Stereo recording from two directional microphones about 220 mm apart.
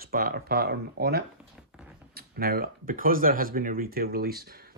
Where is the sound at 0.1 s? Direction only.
45° right (ahead or behind).